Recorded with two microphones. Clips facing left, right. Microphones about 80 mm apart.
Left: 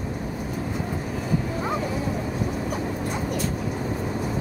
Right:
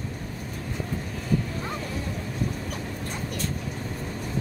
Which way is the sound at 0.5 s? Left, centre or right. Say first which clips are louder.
Left 2 dB; centre.